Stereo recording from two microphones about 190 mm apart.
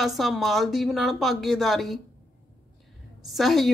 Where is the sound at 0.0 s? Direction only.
Centre (ahead or behind).